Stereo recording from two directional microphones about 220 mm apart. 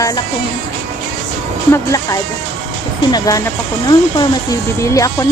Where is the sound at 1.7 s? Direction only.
15° left (ahead or behind).